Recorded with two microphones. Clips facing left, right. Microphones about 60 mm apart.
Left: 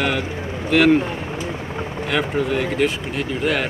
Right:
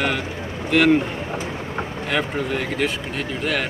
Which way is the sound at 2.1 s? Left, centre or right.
Centre.